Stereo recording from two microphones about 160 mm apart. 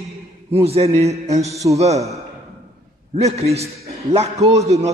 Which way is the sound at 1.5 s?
20° right (ahead or behind).